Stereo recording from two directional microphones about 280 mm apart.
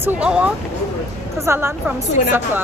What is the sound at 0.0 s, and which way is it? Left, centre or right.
A woman's voice, centre.